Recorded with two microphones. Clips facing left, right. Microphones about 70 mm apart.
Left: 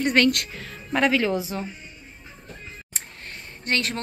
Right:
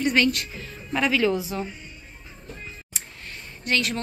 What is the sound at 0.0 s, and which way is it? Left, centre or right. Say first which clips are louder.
Speech: left 2 dB; left.